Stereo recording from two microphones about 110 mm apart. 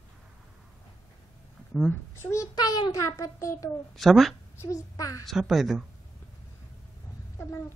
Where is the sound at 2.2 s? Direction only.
30° left (ahead or behind).